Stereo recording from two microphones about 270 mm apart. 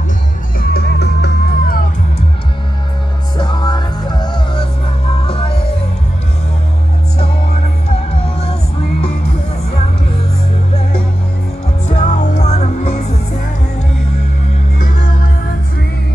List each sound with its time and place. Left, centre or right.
0.6 s music: left
3.3 s music: centre
8.1 s music: left
11.9 s music: left
14.8 s music: left